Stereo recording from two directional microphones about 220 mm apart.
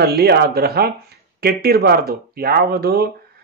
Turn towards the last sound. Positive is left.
turn(degrees=-45)  # may be behind; listen again after turning